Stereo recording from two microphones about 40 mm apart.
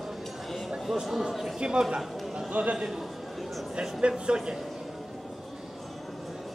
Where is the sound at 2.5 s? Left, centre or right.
Right.